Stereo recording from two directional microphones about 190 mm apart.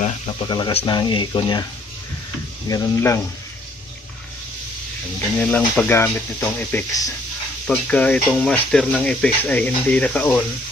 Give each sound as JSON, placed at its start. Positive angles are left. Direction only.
{"t": 0.0, "sound": "speech", "side_deg": 25}
{"t": 2.7, "sound": "speech", "side_deg": 15}
{"t": 5.4, "sound": "speech", "side_deg": 10}